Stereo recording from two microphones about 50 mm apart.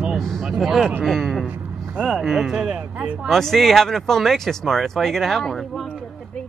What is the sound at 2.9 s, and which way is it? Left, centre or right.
Speech, right.